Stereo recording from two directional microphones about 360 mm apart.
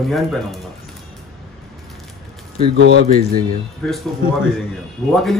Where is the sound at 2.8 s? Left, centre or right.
Right.